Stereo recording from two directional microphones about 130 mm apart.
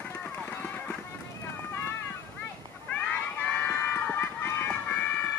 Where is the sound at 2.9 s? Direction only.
10° left (ahead or behind).